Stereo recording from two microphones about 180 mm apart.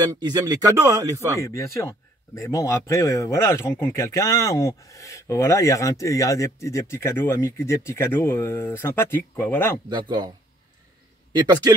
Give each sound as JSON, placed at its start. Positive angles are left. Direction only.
{"t": 0.1, "sound": "speech", "side_deg": -20}
{"t": 1.4, "sound": "a man's voice", "side_deg": 15}
{"t": 9.8, "sound": "speech", "side_deg": -25}